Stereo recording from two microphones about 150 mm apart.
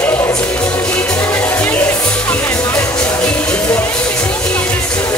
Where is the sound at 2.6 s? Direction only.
20° left (ahead or behind).